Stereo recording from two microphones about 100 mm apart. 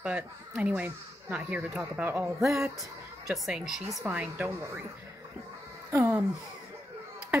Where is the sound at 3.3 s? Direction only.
5° right (ahead or behind).